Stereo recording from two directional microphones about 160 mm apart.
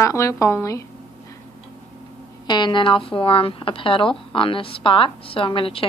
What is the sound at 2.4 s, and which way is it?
A woman's voice, 30° left (ahead or behind).